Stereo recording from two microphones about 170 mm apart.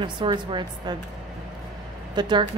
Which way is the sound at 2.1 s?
25° right (ahead or behind).